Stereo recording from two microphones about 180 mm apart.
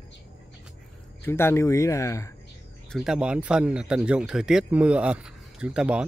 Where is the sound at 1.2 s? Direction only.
15° left (ahead or behind).